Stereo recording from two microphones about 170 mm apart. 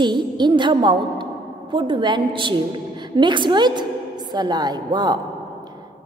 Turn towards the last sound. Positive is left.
turn(degrees=-25)  # may be behind; listen again after turning